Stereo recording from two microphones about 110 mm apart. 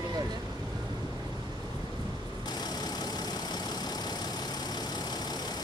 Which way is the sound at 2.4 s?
40° left (ahead or behind).